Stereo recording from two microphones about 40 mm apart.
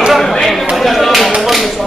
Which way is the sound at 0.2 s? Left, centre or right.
Centre.